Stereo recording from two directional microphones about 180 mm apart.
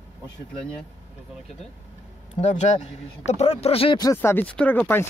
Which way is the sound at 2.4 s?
40° left (ahead or behind).